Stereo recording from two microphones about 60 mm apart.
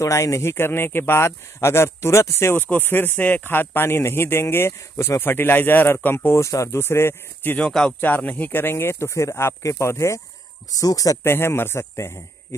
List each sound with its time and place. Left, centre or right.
0.0 s speech: left
2.7 s speech: left
6.3 s speech: left
6.8 s speech: left
8.0 s speech: left
10.7 s speech: left
11.2 s speech: left